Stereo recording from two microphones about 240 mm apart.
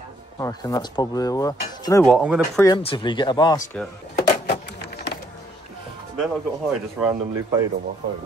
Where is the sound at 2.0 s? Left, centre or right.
Centre.